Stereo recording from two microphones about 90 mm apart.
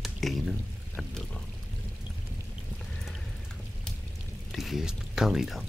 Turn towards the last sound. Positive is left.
turn(degrees=0)  # may be behind; listen again after turning